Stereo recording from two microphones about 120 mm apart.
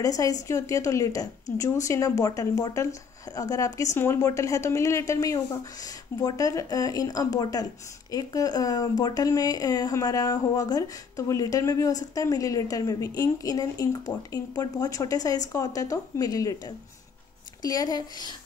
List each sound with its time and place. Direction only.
0.0 s a woman's voice: 30° left (ahead or behind)